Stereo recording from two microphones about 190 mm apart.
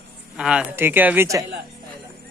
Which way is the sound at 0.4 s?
5° right (ahead or behind).